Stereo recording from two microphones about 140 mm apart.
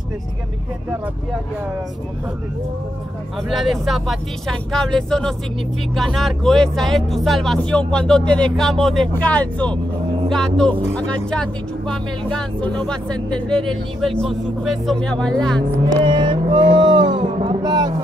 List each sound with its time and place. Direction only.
3.4 s speech: centre (ahead or behind)
16.0 s speech: 35° right (ahead or behind)